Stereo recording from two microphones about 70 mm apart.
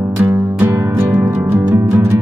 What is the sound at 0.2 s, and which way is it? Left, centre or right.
Music, right.